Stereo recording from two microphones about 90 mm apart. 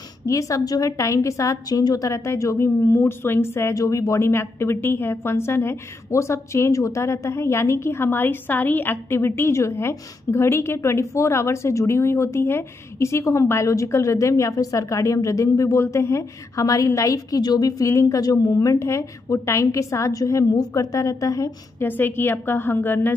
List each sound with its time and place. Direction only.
0.3 s a woman's voice: 40° left (ahead or behind)
21.8 s a woman's voice: 20° left (ahead or behind)